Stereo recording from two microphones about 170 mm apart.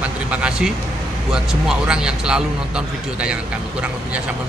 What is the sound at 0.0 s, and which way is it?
Vehicle, 5° right (ahead or behind).